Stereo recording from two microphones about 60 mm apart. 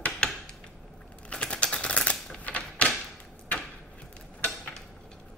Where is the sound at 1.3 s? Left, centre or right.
Centre.